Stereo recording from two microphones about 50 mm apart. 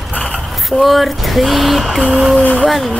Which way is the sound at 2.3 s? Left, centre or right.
Left.